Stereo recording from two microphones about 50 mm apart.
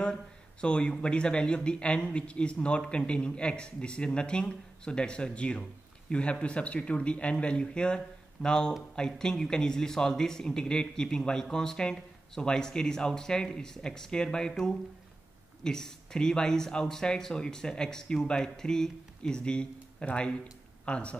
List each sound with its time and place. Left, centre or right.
0.0 s a man's voice: centre